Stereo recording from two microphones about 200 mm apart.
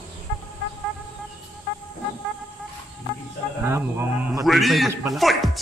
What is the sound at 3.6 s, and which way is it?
Speech, 10° right (ahead or behind).